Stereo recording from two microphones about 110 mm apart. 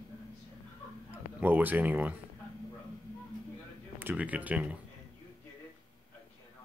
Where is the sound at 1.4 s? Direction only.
15° right (ahead or behind).